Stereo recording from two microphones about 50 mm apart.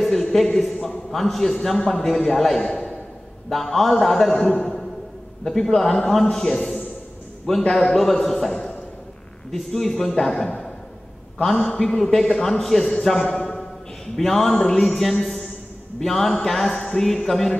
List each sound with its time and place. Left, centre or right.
0.0 s a man's voice: centre
3.4 s a man's voice: centre
11.8 s a man's voice: centre
13.3 s a sound: centre
14.1 s a man's voice: centre